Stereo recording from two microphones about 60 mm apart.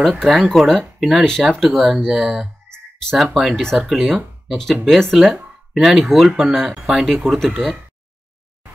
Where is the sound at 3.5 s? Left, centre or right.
Centre.